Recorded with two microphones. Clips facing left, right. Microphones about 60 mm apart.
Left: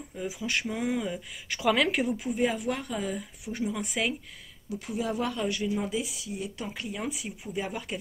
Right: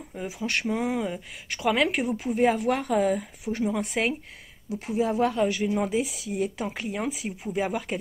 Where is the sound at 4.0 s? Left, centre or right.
Right.